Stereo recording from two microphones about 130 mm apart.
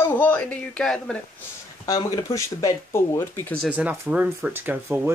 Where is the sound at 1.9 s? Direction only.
25° left (ahead or behind).